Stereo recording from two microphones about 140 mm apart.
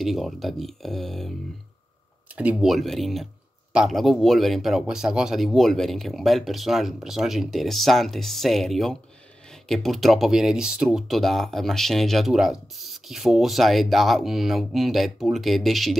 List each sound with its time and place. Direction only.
0.0 s speech: centre (ahead or behind)
2.3 s speech: 5° right (ahead or behind)